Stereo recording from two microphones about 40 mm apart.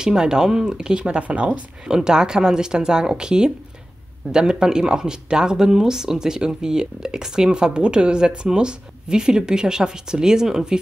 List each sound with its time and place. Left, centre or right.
0.0 s speech: centre
1.9 s speech: centre